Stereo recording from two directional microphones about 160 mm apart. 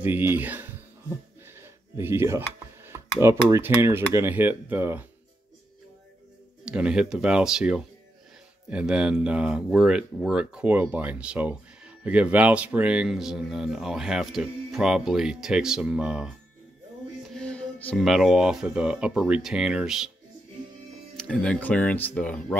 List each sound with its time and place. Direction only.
0.0 s speech: 15° right (ahead or behind)
1.6 s a sound: 15° right (ahead or behind)
3.4 s speech: 15° right (ahead or behind)
6.6 s speech: 5° right (ahead or behind)
17.3 s speech: 5° left (ahead or behind)
21.2 s speech: 5° left (ahead or behind)